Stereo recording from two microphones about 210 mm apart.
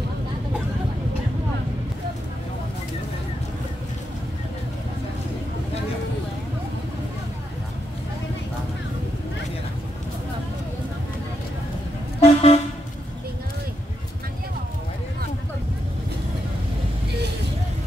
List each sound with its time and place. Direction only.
12.2 s vehicle: 30° left (ahead or behind)